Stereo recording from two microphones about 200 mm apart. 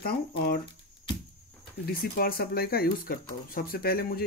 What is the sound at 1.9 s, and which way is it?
Speech, 50° left (ahead or behind).